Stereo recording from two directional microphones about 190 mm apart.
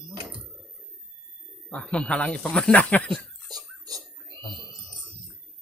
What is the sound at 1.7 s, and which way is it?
Speech, 5° left (ahead or behind).